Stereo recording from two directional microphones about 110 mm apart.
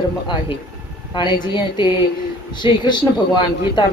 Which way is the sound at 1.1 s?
40° left (ahead or behind).